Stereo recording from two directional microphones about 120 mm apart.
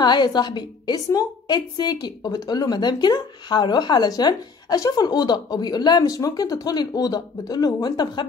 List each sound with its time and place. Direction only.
0.0 s a woman's voice: 35° left (ahead or behind)